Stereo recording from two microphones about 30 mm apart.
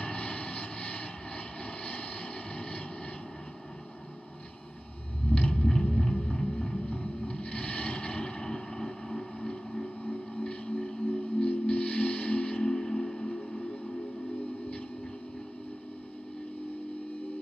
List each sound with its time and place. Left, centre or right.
0.0 s vehicle: left
5.5 s music: left
6.9 s vehicle: left
8.5 s vehicle: left
10.3 s music: left
12.7 s music: centre